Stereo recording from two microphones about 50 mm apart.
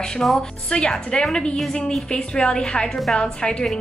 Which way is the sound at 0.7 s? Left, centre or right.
Centre.